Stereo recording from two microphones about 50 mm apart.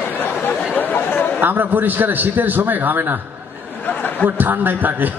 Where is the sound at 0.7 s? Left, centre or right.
Left.